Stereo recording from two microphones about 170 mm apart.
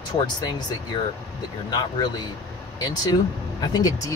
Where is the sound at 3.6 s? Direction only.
20° left (ahead or behind).